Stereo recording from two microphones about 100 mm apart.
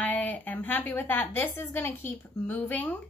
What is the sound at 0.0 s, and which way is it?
A woman's voice, 15° left (ahead or behind).